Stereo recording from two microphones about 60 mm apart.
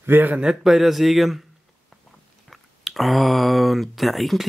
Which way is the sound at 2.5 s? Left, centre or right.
Centre.